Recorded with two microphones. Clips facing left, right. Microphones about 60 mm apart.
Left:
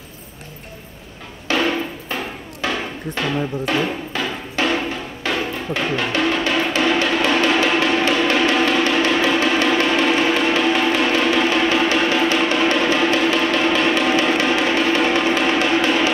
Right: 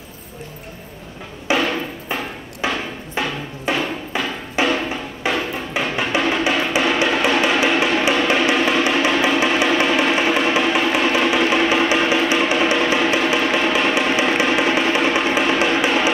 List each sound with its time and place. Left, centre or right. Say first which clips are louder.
1.5 s music: right 1 dB; centre
2.6 s a sound: right 1 dB; centre
3.2 s speech: left 3 dB; centre
4.1 s music: right 3 dB; centre